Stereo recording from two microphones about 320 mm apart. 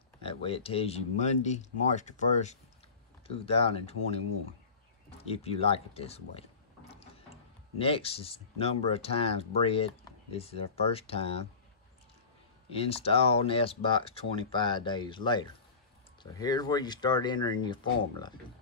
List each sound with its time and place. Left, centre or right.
0.2 s speech: centre
5.3 s mechanisms: centre
7.8 s speech: centre
12.6 s speech: centre